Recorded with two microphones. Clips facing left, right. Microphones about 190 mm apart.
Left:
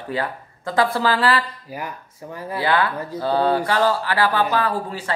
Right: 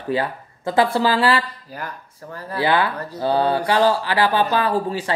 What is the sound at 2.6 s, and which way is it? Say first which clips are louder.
Speech: right 1 dB; 20° right (ahead or behind).